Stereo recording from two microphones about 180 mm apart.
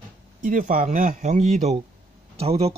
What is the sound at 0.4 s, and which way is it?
Speech, 50° right (ahead or behind).